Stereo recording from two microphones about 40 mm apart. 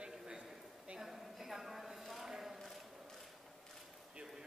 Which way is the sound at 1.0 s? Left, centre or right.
Centre.